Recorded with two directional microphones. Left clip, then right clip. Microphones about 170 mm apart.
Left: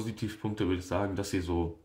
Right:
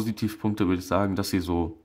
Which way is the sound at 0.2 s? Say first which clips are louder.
Right 5 dB; 45° right (ahead or behind).